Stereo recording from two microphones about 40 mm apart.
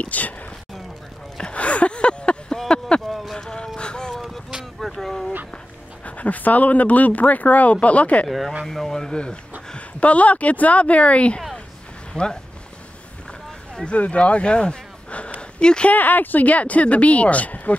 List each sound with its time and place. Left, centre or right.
0.0 s speech: left
1.4 s a sound: left
3.1 s a sound: centre
3.3 s music: centre
4.7 s vehicle: centre
6.0 s speech: left
8.3 s speech: centre
9.8 s speech: left
12.1 s speech: centre
13.8 s speech: left
15.6 s speech: left
15.9 s speech: left